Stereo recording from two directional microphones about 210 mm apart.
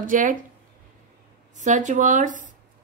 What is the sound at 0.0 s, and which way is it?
Speech, 40° right (ahead or behind).